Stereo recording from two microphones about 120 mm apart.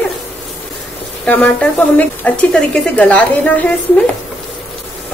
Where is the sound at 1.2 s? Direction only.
10° left (ahead or behind).